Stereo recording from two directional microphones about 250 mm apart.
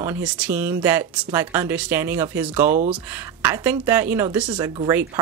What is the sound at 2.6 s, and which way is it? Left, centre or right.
Speech, right.